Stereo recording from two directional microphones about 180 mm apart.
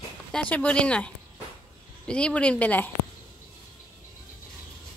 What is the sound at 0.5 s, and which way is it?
Speech, 5° left (ahead or behind).